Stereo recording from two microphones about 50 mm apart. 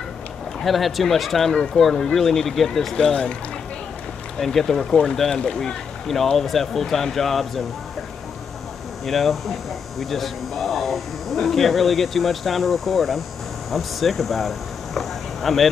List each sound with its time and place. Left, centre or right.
0.7 s speech: centre
3.0 s speech: centre
4.4 s speech: centre
9.0 s speech: centre